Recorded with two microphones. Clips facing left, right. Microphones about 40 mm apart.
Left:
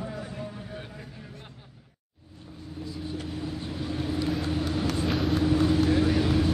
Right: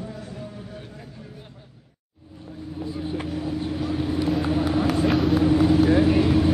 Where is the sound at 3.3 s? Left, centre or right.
Centre.